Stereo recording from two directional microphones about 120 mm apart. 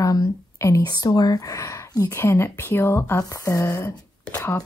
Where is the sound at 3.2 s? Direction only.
30° left (ahead or behind).